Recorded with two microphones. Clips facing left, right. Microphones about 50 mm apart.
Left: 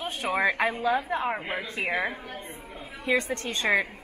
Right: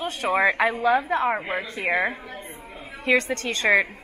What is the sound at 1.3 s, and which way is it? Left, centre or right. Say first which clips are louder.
Speech: right 5 dB; right.